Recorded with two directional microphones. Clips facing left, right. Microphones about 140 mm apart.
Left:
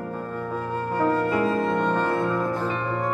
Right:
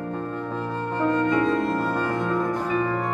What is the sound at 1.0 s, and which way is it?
Music, 10° left (ahead or behind).